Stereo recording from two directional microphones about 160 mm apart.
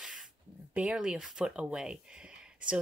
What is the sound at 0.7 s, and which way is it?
Speech, 5° right (ahead or behind).